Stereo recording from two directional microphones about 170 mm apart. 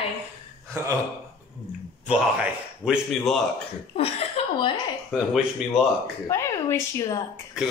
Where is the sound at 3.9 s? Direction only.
35° left (ahead or behind).